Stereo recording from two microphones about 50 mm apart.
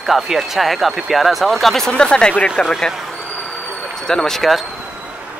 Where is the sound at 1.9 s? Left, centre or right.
Centre.